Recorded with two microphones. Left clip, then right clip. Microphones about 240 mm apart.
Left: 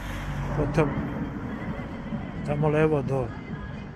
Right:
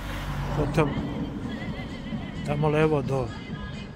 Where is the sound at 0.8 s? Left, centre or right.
Centre.